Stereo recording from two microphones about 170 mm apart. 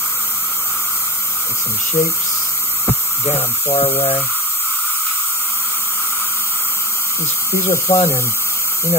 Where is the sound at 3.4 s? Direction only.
15° left (ahead or behind).